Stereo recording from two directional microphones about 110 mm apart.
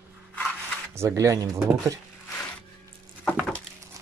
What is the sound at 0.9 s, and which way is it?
Speech, 30° right (ahead or behind).